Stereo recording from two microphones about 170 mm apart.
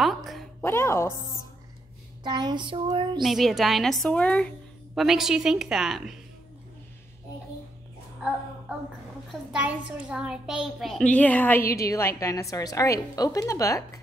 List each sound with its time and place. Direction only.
0.0 s a sound: centre (ahead or behind)
0.6 s a woman's voice: 15° left (ahead or behind)
2.2 s child singing: 25° right (ahead or behind)
3.2 s a child's voice: centre (ahead or behind)
9.3 s a child's voice: 5° right (ahead or behind); by 14.0 s 20° left (ahead or behind)